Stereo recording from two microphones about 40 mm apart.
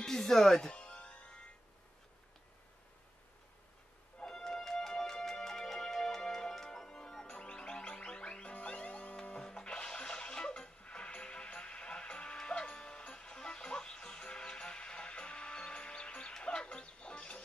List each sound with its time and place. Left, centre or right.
0.0 s speech: centre
0.7 s music: left
4.3 s music: centre
7.2 s music: left
9.2 s music: left